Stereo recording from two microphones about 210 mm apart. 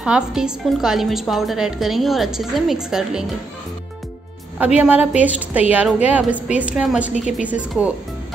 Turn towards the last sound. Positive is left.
turn(degrees=-5)  # may be behind; listen again after turning